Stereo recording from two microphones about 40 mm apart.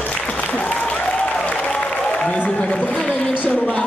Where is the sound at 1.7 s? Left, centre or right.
Left.